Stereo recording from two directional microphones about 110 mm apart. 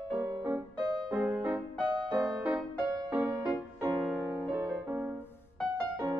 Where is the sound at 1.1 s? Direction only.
15° right (ahead or behind).